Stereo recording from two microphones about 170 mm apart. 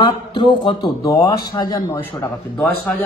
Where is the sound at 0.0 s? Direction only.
30° left (ahead or behind).